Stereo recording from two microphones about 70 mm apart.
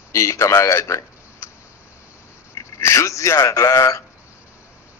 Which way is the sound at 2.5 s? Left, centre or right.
Left.